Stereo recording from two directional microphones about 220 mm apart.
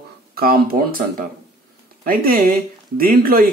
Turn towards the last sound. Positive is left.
turn(degrees=-40)  # may be behind; listen again after turning